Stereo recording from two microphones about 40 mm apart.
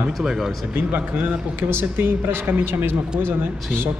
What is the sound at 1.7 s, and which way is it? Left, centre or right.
Speech, right.